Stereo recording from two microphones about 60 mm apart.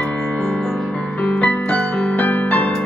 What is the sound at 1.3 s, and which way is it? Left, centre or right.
Music, left.